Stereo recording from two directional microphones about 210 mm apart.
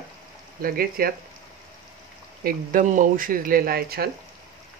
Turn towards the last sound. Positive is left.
turn(degrees=-45)  # may be behind; listen again after turning